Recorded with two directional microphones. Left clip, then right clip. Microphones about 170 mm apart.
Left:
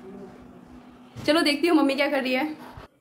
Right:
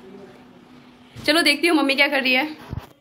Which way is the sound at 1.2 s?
5° left (ahead or behind).